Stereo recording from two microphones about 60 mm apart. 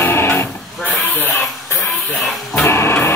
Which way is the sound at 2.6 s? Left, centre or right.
Left.